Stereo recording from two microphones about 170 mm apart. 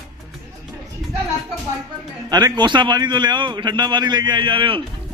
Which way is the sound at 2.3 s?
25° right (ahead or behind).